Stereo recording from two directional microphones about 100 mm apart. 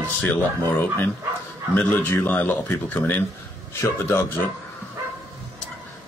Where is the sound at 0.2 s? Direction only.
20° left (ahead or behind).